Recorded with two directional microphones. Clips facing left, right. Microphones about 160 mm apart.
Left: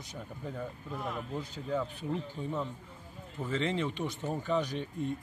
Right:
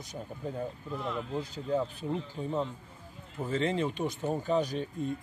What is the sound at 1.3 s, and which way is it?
Speech, 30° right (ahead or behind).